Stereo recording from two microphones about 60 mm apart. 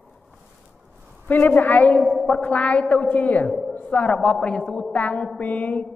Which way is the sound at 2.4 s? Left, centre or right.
Left.